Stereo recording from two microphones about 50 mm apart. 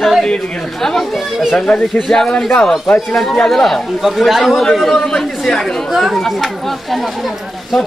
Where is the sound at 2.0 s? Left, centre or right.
Centre.